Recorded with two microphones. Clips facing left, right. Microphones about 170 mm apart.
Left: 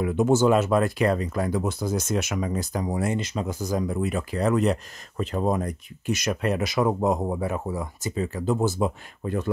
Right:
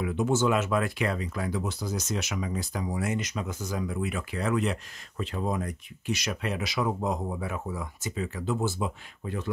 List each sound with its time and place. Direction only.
0.0 s speech: 45° left (ahead or behind)